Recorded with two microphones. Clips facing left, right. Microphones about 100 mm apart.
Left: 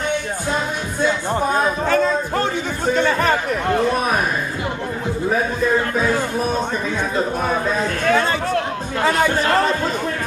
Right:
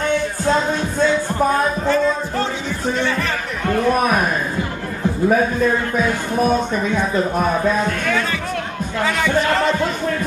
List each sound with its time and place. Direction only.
3.0 s music: 45° left (ahead or behind)
8.1 s a sound: 35° left (ahead or behind)
9.0 s music: 40° left (ahead or behind)